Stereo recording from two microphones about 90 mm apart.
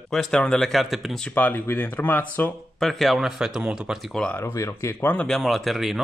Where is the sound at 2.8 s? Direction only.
5° left (ahead or behind).